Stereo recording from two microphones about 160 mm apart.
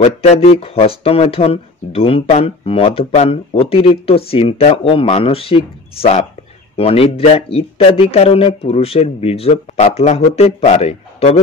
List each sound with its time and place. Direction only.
0.0 s speech: 40° left (ahead or behind)